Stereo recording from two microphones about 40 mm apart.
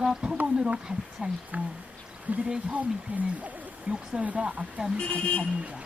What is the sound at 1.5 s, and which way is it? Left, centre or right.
Speech, right.